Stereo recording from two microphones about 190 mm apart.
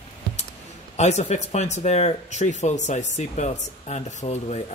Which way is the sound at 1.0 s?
35° left (ahead or behind).